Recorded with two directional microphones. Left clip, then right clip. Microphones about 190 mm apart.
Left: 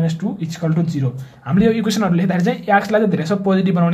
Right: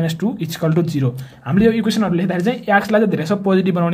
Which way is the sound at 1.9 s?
10° right (ahead or behind).